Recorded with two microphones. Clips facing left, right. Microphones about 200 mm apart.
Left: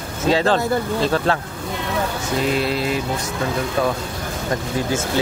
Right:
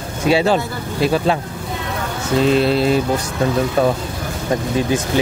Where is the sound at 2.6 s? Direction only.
30° right (ahead or behind).